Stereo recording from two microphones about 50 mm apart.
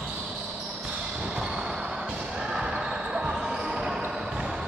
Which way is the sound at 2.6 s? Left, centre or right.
Centre.